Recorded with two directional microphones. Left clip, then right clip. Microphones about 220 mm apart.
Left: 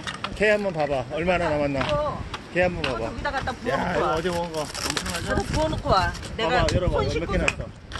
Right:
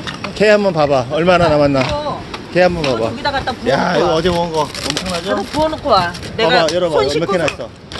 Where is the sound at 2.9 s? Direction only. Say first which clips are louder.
Right 11 dB; 20° right (ahead or behind).